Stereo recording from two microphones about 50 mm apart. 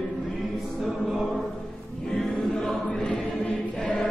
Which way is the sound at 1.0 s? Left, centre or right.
Centre.